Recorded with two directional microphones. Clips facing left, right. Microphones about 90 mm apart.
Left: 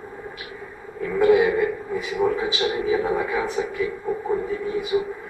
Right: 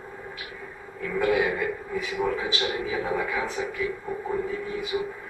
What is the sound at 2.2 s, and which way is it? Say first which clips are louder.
A man's voice: left 6 dB; 15° left (ahead or behind).